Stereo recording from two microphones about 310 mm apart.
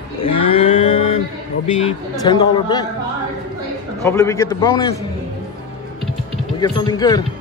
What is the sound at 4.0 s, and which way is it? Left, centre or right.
Speech, centre.